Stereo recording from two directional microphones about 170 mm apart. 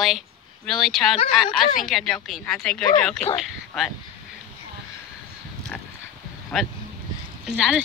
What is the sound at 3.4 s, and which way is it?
Dog, centre (ahead or behind).